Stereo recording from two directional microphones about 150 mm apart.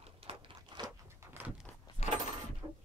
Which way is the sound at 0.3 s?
35° right (ahead or behind).